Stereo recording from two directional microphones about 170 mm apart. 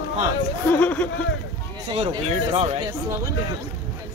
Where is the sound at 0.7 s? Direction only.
10° left (ahead or behind).